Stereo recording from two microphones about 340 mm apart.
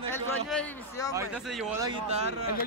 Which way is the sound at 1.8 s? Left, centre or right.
Centre.